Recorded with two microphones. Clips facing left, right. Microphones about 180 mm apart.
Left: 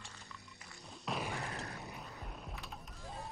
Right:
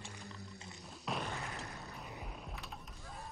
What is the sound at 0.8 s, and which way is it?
Thump, centre (ahead or behind).